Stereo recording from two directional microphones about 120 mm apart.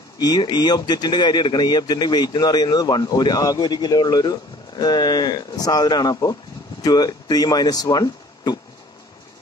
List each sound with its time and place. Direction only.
0.2 s speech: 35° left (ahead or behind)